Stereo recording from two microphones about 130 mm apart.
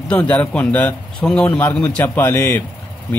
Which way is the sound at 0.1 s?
10° left (ahead or behind).